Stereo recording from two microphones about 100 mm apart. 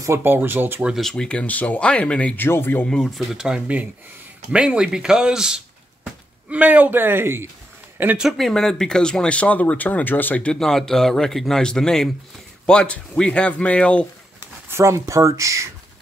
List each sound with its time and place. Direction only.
0.0 s a man's voice: 25° right (ahead or behind)
0.8 s speech: centre (ahead or behind)
1.1 s speech: 10° left (ahead or behind)
2.9 s a man's voice: centre (ahead or behind); by 7.4 s 25° right (ahead or behind)
8.2 s speech: centre (ahead or behind)
14.7 s speech: 30° right (ahead or behind)